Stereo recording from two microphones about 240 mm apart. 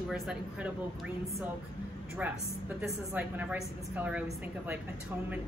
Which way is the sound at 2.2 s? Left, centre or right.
Centre.